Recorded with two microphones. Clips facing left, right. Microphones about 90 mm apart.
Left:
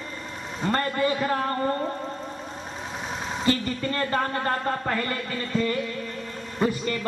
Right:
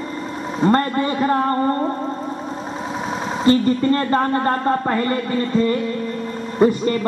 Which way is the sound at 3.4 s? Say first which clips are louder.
Right 10 dB; 35° right (ahead or behind).